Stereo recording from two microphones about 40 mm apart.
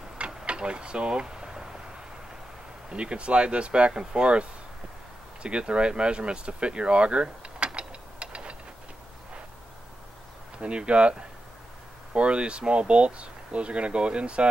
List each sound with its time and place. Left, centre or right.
0.5 s a sound: right
2.9 s speech: right
10.6 s speech: right